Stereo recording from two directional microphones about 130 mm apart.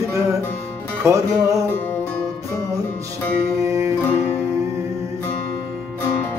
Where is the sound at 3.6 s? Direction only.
25° right (ahead or behind).